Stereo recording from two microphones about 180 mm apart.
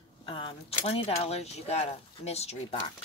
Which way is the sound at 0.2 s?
30° left (ahead or behind).